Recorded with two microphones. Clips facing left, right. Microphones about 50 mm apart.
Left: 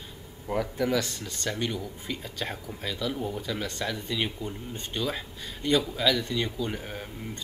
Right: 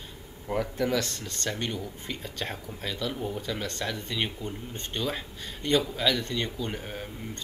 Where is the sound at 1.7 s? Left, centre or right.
Centre.